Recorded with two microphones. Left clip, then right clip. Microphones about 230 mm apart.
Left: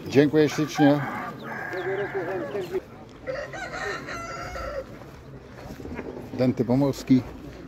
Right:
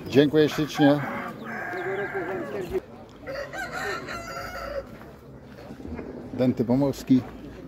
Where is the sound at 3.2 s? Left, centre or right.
Right.